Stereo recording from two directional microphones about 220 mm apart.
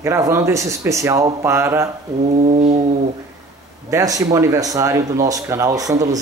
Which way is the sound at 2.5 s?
30° right (ahead or behind).